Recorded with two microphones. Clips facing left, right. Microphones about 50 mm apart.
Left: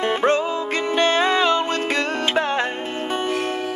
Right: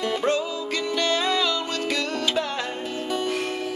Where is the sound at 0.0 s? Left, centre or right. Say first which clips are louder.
Left 5 dB; left.